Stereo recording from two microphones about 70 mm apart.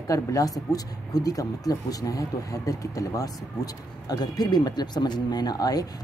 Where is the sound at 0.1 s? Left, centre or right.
Left.